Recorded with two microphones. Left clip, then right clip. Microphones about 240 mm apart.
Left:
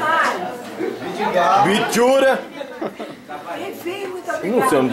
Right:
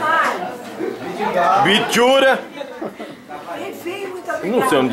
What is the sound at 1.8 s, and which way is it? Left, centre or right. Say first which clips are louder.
Speech: right 1 dB; centre.